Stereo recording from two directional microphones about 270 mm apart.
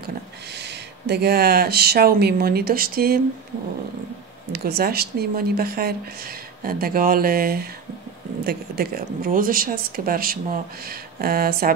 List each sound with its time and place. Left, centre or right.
0.6 s speech: right
4.5 s speech: right